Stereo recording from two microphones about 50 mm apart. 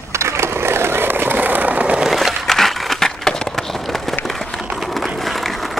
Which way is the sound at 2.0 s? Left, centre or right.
Centre.